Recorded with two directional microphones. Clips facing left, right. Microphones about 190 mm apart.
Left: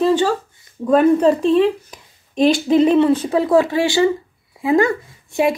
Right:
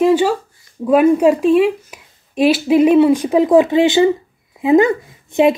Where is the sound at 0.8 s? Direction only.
10° right (ahead or behind).